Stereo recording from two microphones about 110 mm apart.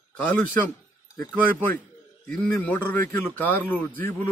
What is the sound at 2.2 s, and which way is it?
A man's voice, 15° left (ahead or behind).